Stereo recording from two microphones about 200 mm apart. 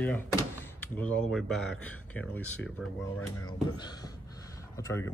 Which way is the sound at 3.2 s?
20° left (ahead or behind).